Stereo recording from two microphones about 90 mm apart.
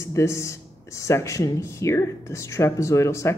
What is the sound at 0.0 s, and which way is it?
Speech, 35° left (ahead or behind).